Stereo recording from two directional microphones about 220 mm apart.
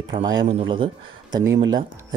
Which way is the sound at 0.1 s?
20° right (ahead or behind).